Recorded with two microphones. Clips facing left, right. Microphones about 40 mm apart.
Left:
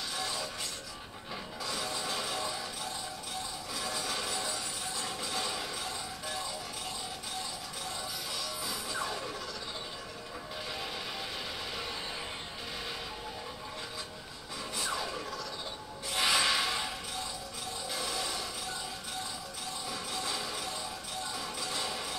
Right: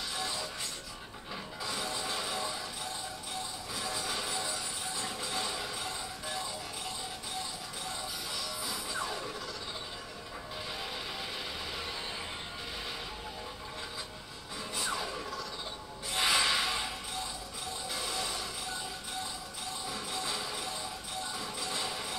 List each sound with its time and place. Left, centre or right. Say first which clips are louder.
0.1 s music: left 1 dB; right
1.6 s music: even; centre
3.9 s music: even; centre
4.9 s a sound: even; right
5.4 s a sound: left 1 dB; centre
5.8 s music: even; right
8.6 s music: left 1 dB; centre
14.8 s a sound: even; centre
19.9 s music: even; right